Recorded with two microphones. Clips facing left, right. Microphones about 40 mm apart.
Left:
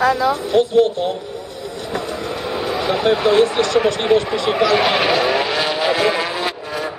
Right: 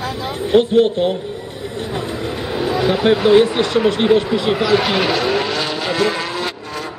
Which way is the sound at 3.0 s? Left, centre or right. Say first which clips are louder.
Right 2 dB; centre.